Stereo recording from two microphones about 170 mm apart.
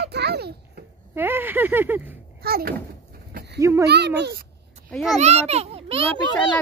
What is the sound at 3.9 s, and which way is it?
Speech, 75° right (ahead or behind).